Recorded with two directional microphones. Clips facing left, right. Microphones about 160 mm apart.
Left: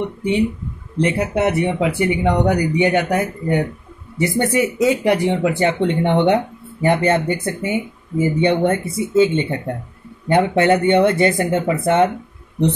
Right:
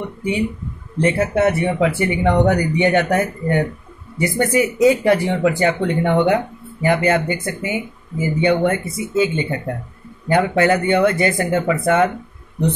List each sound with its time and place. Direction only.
0.9 s speech: 15° left (ahead or behind)
4.2 s speech: 25° left (ahead or behind)